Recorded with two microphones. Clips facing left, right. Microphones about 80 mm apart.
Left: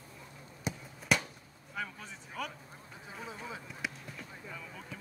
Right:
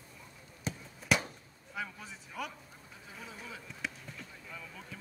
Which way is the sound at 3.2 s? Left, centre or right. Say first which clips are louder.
Left 4 dB; left.